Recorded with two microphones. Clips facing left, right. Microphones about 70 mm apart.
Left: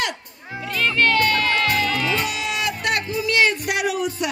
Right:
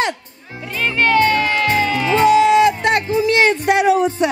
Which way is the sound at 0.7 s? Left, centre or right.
Centre.